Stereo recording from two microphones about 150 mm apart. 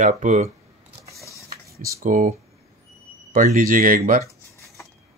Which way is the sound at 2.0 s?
45° right (ahead or behind).